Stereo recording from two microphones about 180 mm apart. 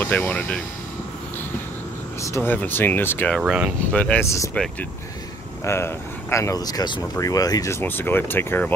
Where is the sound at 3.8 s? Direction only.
10° left (ahead or behind).